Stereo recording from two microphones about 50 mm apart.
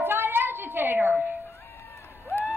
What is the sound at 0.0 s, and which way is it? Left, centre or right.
Music, right.